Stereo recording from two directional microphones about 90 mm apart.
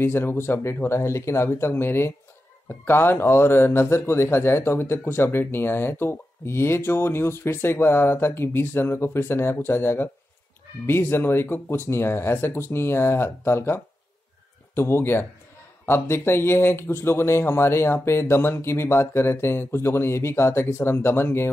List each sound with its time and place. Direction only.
0.0 s speech: 25° left (ahead or behind)
14.8 s speech: 25° left (ahead or behind)